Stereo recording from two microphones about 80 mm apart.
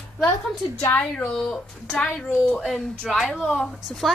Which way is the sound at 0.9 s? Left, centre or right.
Centre.